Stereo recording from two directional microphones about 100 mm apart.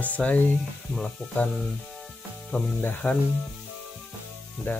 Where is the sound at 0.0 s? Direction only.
15° left (ahead or behind).